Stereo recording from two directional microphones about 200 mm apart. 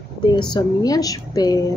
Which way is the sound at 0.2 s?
20° left (ahead or behind).